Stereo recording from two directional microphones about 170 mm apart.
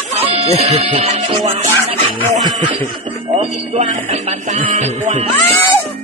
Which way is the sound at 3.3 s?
40° right (ahead or behind).